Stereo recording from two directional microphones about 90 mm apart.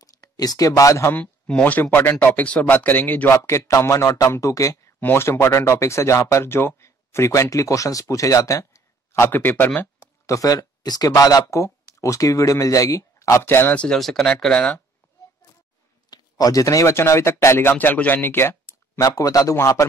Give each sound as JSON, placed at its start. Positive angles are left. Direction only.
{"t": 0.0, "sound": "speech", "side_deg": 45}
{"t": 1.1, "sound": "speech", "side_deg": 15}
{"t": 3.4, "sound": "speech", "side_deg": 35}
{"t": 5.0, "sound": "speech", "side_deg": 25}
{"t": 9.3, "sound": "speech", "side_deg": 20}
{"t": 10.2, "sound": "speech", "side_deg": 40}
{"t": 13.7, "sound": "speech", "side_deg": 5}
{"t": 16.1, "sound": "speech", "side_deg": 45}
{"t": 18.9, "sound": "speech", "side_deg": 40}